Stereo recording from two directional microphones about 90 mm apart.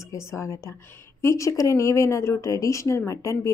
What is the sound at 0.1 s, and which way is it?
A woman's voice, 35° left (ahead or behind).